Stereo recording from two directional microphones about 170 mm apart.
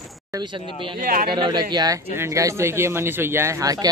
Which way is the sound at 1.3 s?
25° right (ahead or behind).